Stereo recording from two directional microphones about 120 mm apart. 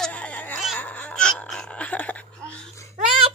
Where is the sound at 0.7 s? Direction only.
10° left (ahead or behind).